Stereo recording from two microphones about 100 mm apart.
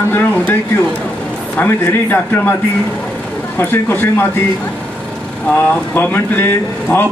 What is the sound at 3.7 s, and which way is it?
Speech, 20° left (ahead or behind).